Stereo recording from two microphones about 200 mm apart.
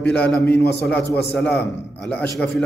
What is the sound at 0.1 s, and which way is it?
A man's voice, 5° left (ahead or behind).